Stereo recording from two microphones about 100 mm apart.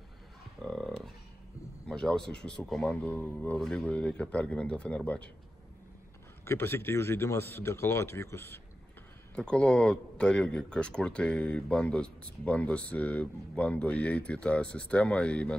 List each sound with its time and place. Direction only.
0.6 s a sound: centre (ahead or behind)
1.9 s speech: 5° left (ahead or behind)
3.1 s speech: 15° left (ahead or behind)
3.5 s speech: 5° left (ahead or behind)
6.4 s speech: 25° left (ahead or behind)
9.3 s speech: 10° left (ahead or behind)